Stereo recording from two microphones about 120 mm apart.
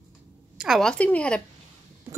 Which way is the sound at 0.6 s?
Centre (ahead or behind).